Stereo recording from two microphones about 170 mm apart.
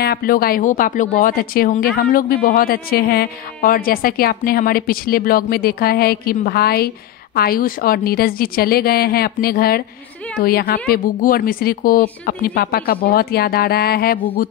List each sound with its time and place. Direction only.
0.0 s a woman's voice: 65° left (ahead or behind)